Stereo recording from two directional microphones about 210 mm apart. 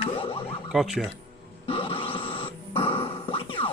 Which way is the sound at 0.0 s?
25° left (ahead or behind).